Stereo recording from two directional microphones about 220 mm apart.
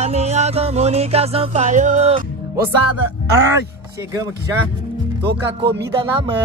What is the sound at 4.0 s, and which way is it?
Speech, 15° right (ahead or behind).